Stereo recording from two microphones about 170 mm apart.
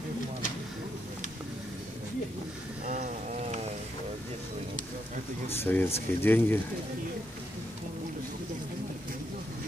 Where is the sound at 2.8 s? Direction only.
45° right (ahead or behind).